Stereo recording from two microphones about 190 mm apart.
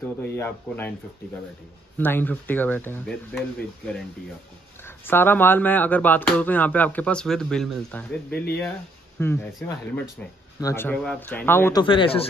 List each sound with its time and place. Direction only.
0.4 s speech: 10° left (ahead or behind)
2.0 s speech: 10° left (ahead or behind)
9.6 s speech: centre (ahead or behind)
10.6 s speech: 15° left (ahead or behind)
11.8 s speech: 25° left (ahead or behind)